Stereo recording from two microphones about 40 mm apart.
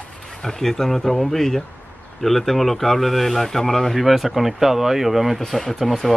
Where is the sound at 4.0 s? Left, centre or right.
Centre.